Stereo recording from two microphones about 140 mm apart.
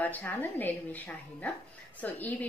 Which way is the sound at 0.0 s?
10° left (ahead or behind).